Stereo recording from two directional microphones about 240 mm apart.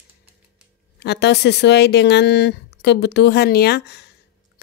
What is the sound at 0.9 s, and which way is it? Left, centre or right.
Speech, left.